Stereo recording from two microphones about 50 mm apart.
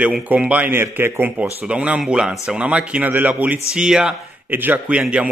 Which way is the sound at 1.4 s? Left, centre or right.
Right.